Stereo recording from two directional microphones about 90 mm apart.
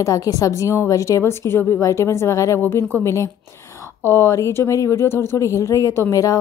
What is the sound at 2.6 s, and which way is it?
A woman's voice, 25° left (ahead or behind).